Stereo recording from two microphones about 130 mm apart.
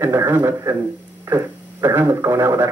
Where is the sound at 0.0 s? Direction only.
20° right (ahead or behind).